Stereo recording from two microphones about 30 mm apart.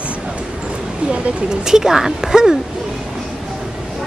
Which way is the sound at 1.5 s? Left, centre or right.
Right.